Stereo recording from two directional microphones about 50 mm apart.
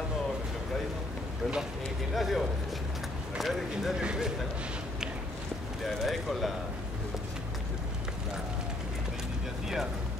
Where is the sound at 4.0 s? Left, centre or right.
Centre.